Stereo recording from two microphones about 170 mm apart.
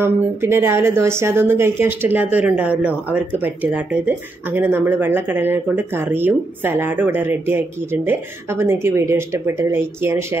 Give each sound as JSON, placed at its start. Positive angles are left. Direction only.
{"t": 0.0, "sound": "a woman's voice", "side_deg": -15}